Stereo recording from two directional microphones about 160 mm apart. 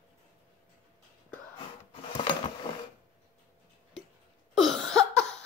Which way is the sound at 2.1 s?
30° left (ahead or behind).